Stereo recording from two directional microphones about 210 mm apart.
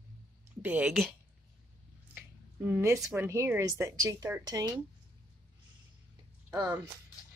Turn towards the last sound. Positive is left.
turn(degrees=-15)  # may be behind; listen again after turning